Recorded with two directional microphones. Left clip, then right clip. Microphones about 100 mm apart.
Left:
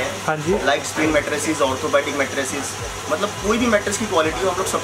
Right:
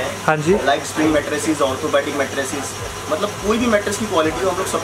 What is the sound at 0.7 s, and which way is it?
Speech, centre (ahead or behind).